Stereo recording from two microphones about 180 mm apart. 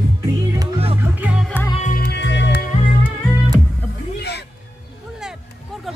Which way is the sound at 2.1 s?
70° left (ahead or behind).